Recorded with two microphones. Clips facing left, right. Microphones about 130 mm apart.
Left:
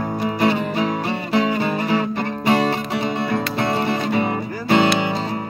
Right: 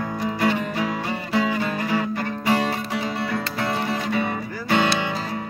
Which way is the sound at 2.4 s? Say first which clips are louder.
Left 4 dB; 25° left (ahead or behind).